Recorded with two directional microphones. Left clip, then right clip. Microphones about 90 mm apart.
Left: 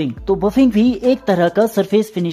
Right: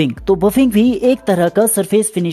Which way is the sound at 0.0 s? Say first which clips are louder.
Right 4 dB; 55° right (ahead or behind).